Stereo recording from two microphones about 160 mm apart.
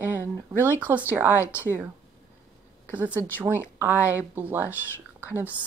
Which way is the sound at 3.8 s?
10° right (ahead or behind).